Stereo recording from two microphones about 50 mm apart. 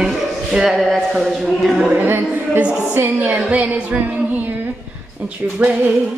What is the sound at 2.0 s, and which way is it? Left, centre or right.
Speech, right.